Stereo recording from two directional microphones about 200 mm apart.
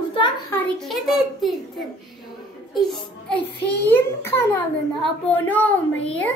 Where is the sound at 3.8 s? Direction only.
10° left (ahead or behind).